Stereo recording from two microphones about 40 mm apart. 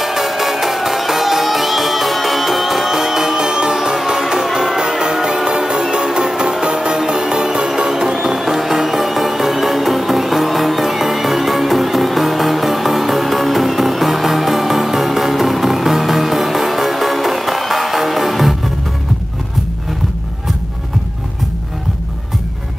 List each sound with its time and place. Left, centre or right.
0.0 s music: centre